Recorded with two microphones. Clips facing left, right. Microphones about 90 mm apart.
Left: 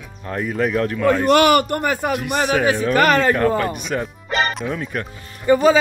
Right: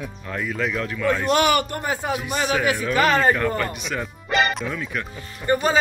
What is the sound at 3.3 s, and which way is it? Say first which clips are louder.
A man's voice: left 5 dB; 45° left (ahead or behind).